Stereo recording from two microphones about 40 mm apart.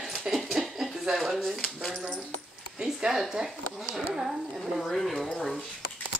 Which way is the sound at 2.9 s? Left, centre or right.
Centre.